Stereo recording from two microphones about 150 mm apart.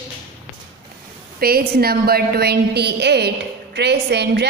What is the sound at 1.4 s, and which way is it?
A woman's voice, 90° right.